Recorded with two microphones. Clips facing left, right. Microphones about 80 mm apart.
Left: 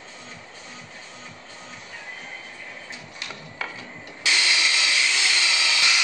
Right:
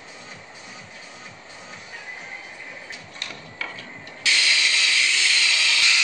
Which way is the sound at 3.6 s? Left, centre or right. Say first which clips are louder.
Left 1 dB; centre.